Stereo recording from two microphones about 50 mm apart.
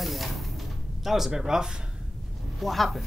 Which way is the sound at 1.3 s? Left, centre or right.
Centre.